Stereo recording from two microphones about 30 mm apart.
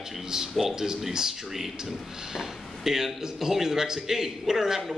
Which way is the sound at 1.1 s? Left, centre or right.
Centre.